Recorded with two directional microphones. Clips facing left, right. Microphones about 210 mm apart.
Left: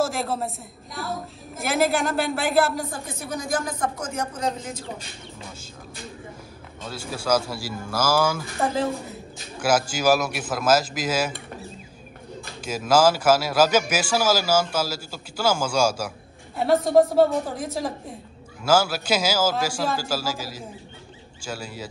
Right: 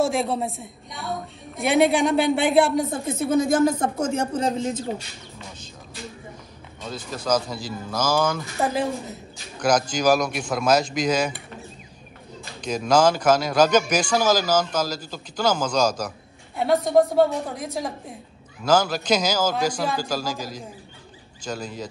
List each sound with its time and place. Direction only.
0.0 s a woman's voice: centre (ahead or behind)
2.9 s speech: 25° right (ahead or behind)
6.8 s a man's voice: 5° left (ahead or behind)
8.5 s a woman's voice: 15° right (ahead or behind)
9.6 s a woman's voice: 5° left (ahead or behind)
12.6 s a man's voice: 5° left (ahead or behind)
17.1 s a woman's voice: centre (ahead or behind)